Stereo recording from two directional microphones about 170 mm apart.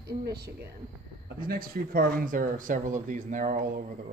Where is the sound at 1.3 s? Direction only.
60° right (ahead or behind).